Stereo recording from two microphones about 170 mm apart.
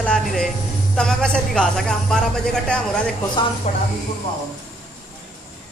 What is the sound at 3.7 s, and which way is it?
Speech, 45° left (ahead or behind).